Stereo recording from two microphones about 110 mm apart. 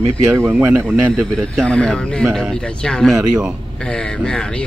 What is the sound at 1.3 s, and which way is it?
Speech, 5° left (ahead or behind).